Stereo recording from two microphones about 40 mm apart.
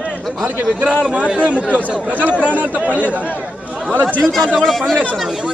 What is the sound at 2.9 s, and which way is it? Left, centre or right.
Speech, left.